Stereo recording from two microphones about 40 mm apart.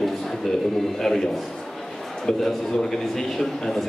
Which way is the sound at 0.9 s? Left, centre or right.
Centre.